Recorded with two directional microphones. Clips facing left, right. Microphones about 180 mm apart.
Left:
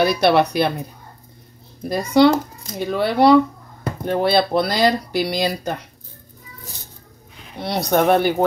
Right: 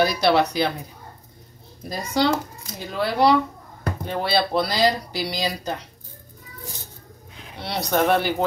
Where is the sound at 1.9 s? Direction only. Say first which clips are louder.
Left 8 dB; 60° left (ahead or behind).